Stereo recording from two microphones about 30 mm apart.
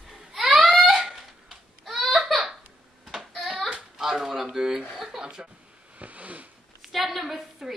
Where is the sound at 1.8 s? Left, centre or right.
Centre.